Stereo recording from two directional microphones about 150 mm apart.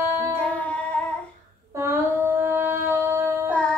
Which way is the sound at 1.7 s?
15° right (ahead or behind).